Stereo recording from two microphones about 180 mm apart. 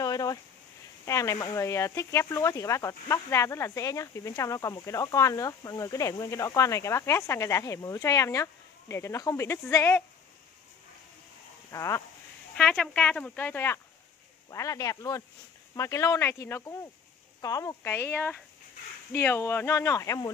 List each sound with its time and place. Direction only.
0.0 s a sound: 20° left (ahead or behind)
1.0 s speech: 15° left (ahead or behind)
11.7 s speech: 15° left (ahead or behind)
12.5 s speech: 5° left (ahead or behind)